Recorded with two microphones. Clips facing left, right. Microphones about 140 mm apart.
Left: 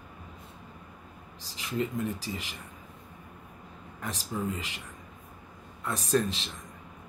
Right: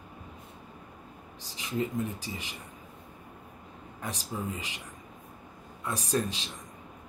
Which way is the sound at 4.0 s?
15° right (ahead or behind).